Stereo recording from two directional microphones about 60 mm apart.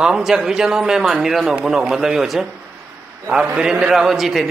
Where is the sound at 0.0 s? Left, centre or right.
Centre.